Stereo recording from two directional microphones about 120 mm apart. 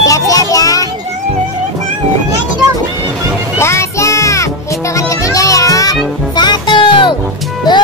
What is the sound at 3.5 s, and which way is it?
Music, 25° left (ahead or behind).